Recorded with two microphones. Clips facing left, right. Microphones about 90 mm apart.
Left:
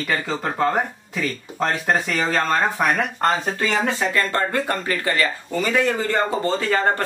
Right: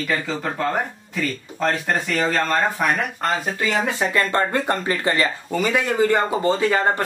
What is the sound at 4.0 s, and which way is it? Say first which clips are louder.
Speech: right 1 dB; 20° right (ahead or behind).